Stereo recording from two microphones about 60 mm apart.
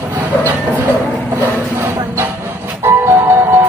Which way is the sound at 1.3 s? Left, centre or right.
Right.